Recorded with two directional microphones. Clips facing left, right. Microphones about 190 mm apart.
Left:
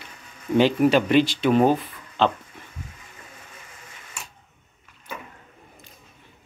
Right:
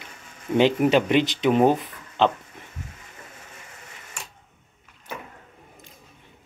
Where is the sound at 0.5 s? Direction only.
20° right (ahead or behind).